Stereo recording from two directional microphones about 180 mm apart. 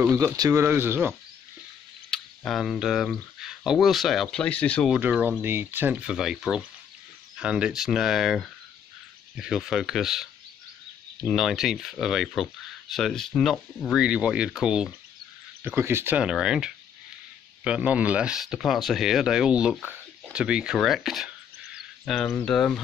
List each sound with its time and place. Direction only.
0.0 s speech: 20° right (ahead or behind)
2.0 s speech: centre (ahead or behind)
4.9 s speech: 10° right (ahead or behind)
11.2 s speech: centre (ahead or behind)
21.7 s a sound: centre (ahead or behind)
22.4 s speech: 5° left (ahead or behind)